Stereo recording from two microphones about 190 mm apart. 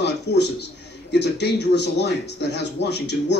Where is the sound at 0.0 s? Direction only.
65° left (ahead or behind).